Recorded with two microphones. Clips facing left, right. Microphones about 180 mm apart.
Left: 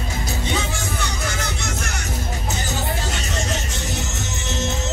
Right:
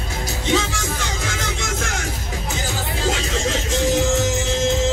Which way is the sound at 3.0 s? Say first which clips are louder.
Right 5 dB; 90° right.